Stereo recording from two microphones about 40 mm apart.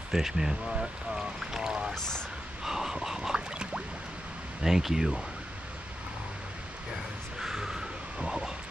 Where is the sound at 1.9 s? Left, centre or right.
Centre.